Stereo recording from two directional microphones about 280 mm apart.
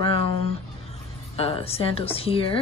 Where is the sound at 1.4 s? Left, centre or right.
Centre.